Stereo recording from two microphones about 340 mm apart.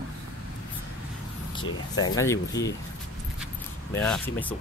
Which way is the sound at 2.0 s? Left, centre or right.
Centre.